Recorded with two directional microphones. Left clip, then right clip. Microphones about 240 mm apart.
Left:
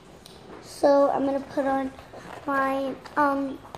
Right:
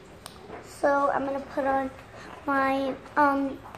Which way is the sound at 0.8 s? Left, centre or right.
Left.